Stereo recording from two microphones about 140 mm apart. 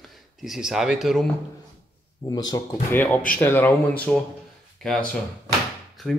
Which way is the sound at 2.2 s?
25° left (ahead or behind).